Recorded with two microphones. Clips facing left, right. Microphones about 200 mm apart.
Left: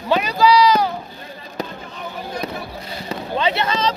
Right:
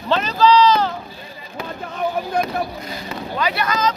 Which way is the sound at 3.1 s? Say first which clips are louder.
Left 3 dB; 25° left (ahead or behind).